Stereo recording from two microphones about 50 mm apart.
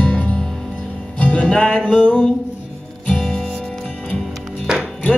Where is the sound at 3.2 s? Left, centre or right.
Centre.